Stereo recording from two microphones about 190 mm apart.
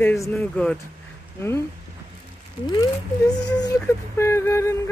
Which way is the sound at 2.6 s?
20° left (ahead or behind).